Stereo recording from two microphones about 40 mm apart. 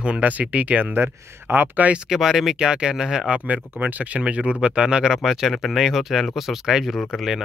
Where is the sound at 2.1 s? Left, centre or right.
Centre.